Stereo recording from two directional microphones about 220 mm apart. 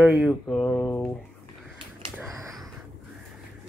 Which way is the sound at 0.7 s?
10° left (ahead or behind).